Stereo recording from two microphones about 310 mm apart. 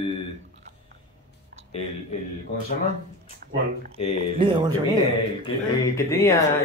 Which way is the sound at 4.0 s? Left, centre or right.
Centre.